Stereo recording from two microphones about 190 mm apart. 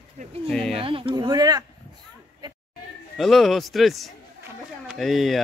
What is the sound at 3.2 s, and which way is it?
Speech, centre (ahead or behind).